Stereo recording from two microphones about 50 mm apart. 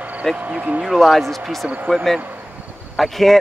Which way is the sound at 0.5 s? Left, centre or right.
Right.